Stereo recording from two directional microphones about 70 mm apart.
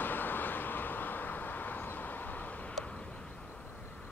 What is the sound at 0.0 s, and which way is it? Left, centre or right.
Vehicle, left.